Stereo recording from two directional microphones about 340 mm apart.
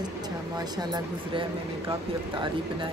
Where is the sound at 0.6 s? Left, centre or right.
Centre.